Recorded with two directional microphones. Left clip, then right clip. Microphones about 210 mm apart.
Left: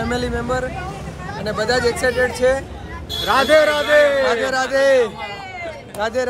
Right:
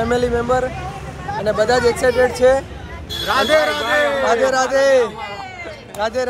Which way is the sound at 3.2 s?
30° left (ahead or behind).